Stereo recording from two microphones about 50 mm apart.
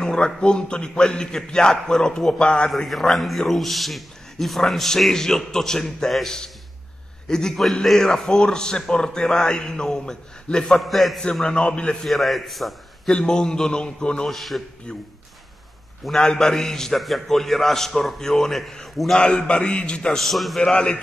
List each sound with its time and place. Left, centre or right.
0.0 s a man's voice: centre
2.7 s a man's voice: centre
10.8 s a man's voice: centre
11.4 s a man's voice: centre
12.1 s a man's voice: centre
13.1 s a man's voice: centre
14.3 s a man's voice: centre
16.1 s a man's voice: centre
19.1 s a man's voice: centre
20.2 s a man's voice: centre
20.6 s a man's voice: left